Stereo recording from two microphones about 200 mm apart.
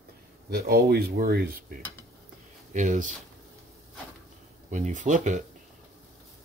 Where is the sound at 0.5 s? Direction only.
50° right (ahead or behind).